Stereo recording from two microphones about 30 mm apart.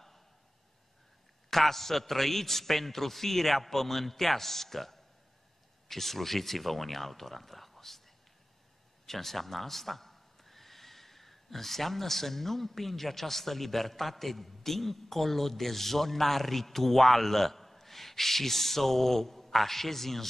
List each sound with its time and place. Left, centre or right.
1.5 s a man's voice: centre
9.0 s a man's voice: centre